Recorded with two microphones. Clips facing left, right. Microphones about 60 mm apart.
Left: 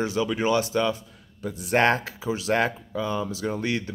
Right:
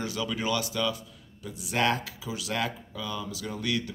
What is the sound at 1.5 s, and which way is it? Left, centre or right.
Speech, left.